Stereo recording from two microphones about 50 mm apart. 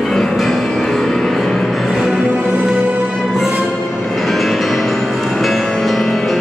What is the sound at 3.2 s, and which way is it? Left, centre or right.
Music, centre.